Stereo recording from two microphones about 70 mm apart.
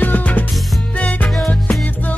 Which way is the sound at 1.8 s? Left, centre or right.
Left.